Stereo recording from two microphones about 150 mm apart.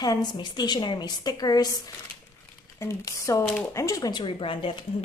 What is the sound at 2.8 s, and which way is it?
A woman's voice, 20° left (ahead or behind).